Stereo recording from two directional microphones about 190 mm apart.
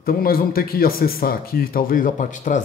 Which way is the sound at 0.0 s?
50° left (ahead or behind).